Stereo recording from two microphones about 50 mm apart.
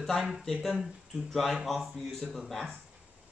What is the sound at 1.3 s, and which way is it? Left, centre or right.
Speech, centre.